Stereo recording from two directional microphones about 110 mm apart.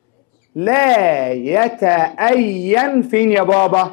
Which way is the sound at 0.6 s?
15° left (ahead or behind).